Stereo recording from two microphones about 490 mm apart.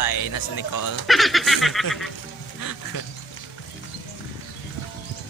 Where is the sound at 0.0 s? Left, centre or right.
Left.